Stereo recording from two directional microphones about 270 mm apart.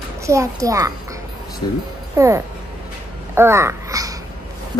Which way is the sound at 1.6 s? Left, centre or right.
Centre.